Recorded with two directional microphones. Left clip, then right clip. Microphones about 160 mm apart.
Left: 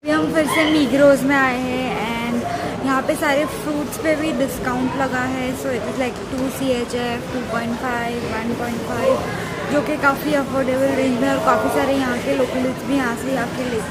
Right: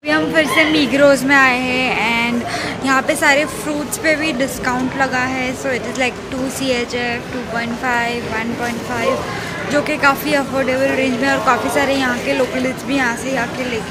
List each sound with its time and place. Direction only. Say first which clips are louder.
0.1 s speech: right 3 dB; 10° left (ahead or behind)
1.4 s a sound: right 6 dB; 10° right (ahead or behind)
2.9 s a woman's voice: right 5 dB; 5° left (ahead or behind)
7.8 s a woman's voice: right 9 dB; 5° left (ahead or behind)
9.8 s a woman's voice: right 5 dB; 5° left (ahead or behind)